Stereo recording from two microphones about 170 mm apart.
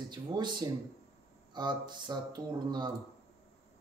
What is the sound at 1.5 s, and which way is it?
Speech, 25° right (ahead or behind).